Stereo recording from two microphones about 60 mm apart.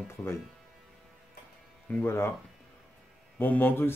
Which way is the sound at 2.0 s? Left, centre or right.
Left.